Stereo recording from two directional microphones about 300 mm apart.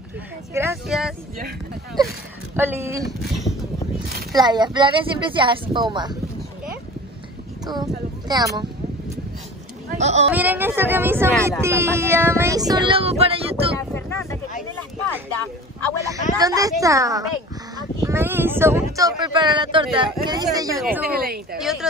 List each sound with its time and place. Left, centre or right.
0.5 s speech: centre
2.5 s speech: centre
4.3 s child singing: centre
7.6 s child singing: centre
9.8 s speech: right
10.3 s child singing: centre
13.7 s boat: centre
16.3 s child singing: centre
17.7 s speech: centre
20.7 s speech: centre
21.1 s speech: right
21.5 s speech: centre